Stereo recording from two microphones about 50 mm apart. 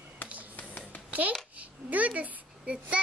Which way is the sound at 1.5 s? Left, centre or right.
Right.